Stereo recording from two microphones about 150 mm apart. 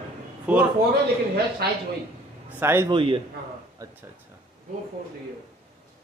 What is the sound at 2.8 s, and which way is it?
Speech, 35° right (ahead or behind).